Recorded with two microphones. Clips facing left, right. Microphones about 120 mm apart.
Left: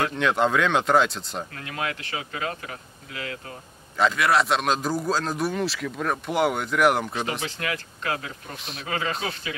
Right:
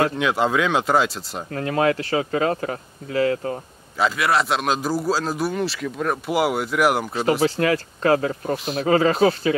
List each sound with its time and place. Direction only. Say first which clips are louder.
0.2 s a man's voice: right 1 dB; 5° right (ahead or behind)
1.5 s speech: right 15 dB; 35° right (ahead or behind)
4.0 s a man's voice: right 1 dB; centre (ahead or behind)
7.2 s speech: right 11 dB; 35° right (ahead or behind)